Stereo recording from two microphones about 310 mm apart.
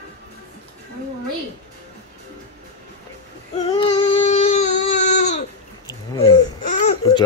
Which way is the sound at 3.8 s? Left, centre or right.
Centre.